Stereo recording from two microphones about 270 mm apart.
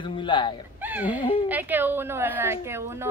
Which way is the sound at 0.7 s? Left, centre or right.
Centre.